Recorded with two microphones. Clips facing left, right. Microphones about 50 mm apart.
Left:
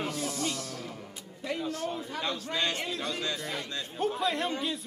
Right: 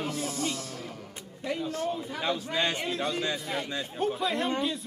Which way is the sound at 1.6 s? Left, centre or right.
Right.